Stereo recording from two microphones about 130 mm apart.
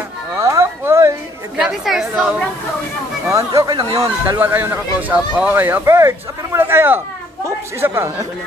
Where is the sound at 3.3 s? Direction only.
25° right (ahead or behind).